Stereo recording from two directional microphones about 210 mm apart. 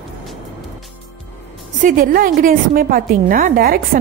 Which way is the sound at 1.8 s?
40° right (ahead or behind).